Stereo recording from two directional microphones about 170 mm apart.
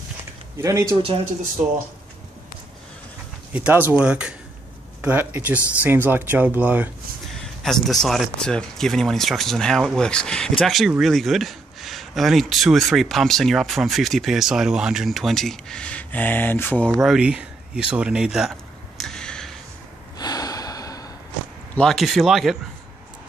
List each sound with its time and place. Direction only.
0.6 s speech: 15° right (ahead or behind)
3.5 s speech: 10° right (ahead or behind)
7.6 s speech: centre (ahead or behind)
18.9 s a sound: 5° left (ahead or behind)
20.2 s gasp: 20° left (ahead or behind)
21.7 s speech: centre (ahead or behind)